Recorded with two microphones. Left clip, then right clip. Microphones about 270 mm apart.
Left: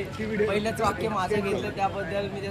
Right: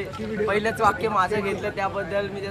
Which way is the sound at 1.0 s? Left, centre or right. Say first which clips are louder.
Right 4 dB; centre.